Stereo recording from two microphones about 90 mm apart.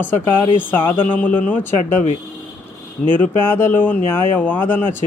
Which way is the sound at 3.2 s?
20° left (ahead or behind).